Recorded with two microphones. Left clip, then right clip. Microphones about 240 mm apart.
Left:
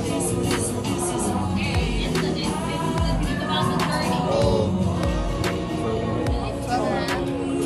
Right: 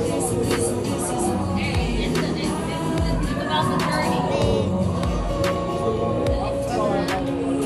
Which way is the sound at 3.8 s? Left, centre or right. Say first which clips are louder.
Right 2 dB; centre.